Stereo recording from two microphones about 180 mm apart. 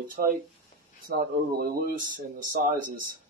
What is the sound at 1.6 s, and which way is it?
Speech, 50° right (ahead or behind).